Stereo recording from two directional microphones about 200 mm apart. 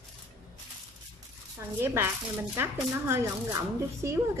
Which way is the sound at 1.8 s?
10° right (ahead or behind).